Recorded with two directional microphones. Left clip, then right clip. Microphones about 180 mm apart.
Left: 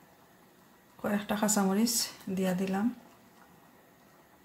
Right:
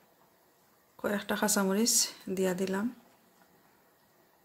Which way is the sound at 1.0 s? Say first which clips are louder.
Even; 50° right (ahead or behind).